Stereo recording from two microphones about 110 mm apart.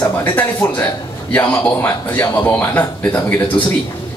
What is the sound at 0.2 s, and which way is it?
Speech, 15° left (ahead or behind).